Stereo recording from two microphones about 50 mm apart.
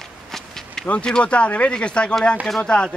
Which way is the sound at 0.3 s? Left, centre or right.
Centre.